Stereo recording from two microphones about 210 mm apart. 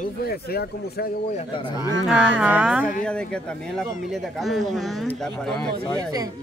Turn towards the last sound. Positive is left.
turn(degrees=5)  # may be behind; listen again after turning